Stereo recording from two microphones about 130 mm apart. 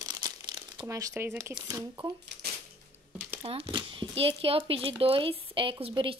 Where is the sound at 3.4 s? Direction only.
40° right (ahead or behind).